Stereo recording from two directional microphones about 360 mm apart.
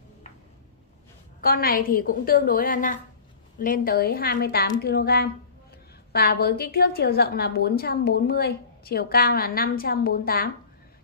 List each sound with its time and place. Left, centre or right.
1.4 s a woman's voice: left